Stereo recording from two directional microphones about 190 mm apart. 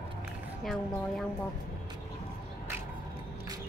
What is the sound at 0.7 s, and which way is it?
Speech, centre (ahead or behind).